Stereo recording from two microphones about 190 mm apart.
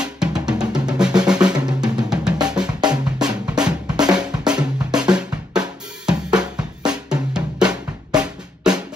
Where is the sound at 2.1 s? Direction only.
5° right (ahead or behind).